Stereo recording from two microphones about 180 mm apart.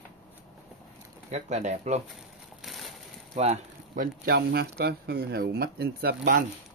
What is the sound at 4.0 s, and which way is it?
Speech, 60° right (ahead or behind).